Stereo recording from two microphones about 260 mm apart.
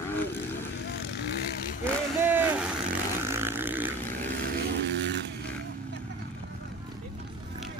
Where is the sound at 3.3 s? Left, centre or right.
Centre.